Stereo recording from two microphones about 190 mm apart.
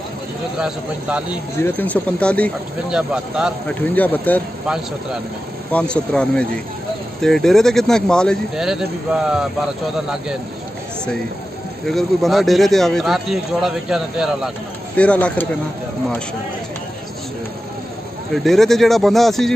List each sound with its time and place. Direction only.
0.6 s speech: 5° right (ahead or behind)
1.6 s speech: 10° left (ahead or behind)
2.9 s speech: 5° right (ahead or behind)
3.6 s speech: 10° left (ahead or behind)
5.7 s speech: 5° left (ahead or behind)
11.8 s speech: centre (ahead or behind)
18.3 s speech: centre (ahead or behind)